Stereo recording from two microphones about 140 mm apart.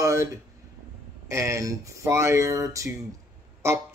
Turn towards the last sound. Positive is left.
turn(degrees=-20)  # may be behind; listen again after turning